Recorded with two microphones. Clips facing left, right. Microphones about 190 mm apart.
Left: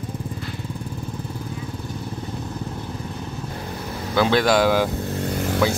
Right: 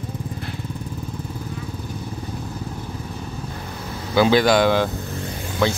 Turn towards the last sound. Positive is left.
turn(degrees=5)  # may be behind; listen again after turning